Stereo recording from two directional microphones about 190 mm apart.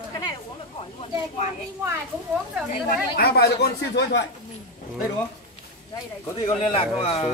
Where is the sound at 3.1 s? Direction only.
55° left (ahead or behind).